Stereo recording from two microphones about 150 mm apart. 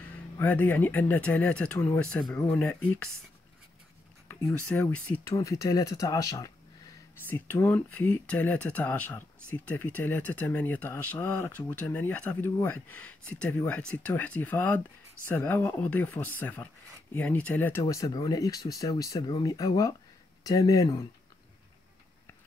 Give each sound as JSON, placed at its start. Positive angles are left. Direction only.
{"t": 0.1, "sound": "speech", "side_deg": 10}
{"t": 4.3, "sound": "speech", "side_deg": 10}
{"t": 5.3, "sound": "speech", "side_deg": 20}